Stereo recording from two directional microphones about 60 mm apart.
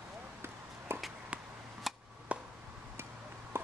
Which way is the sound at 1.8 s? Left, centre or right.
Centre.